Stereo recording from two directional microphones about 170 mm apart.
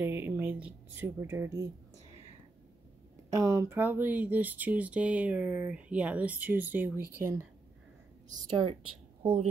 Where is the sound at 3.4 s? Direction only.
20° right (ahead or behind).